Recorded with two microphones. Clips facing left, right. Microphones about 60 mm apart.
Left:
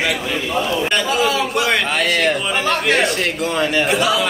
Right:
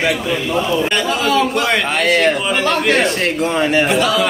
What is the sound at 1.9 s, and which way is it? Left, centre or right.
Speech, right.